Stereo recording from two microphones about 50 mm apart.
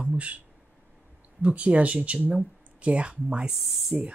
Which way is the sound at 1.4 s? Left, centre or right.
Right.